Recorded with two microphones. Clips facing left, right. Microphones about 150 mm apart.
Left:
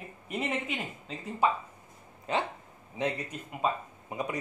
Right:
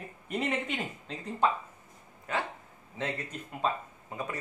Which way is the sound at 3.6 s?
15° left (ahead or behind).